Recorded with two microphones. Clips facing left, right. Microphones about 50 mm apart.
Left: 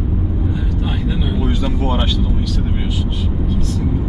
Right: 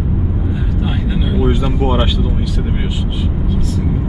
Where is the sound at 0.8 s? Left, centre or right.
Centre.